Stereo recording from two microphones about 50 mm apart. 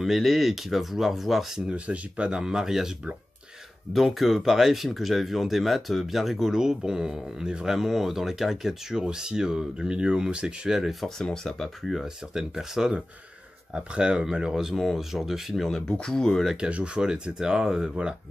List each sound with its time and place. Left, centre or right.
0.0 s speech: centre
1.7 s speech: right
3.9 s speech: centre
10.9 s speech: centre
11.9 s speech: centre
13.9 s speech: centre
14.8 s speech: centre
15.5 s speech: centre
16.5 s speech: right